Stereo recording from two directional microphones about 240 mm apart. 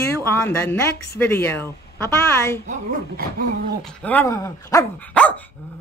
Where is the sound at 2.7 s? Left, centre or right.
Right.